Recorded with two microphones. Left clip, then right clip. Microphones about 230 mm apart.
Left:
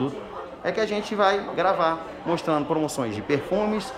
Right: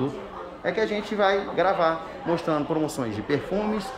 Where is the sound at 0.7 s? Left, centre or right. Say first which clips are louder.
Even; centre.